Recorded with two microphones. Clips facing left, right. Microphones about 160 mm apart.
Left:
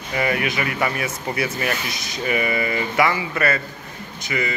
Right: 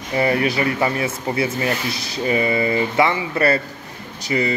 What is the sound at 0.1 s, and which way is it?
Speech, 30° right (ahead or behind).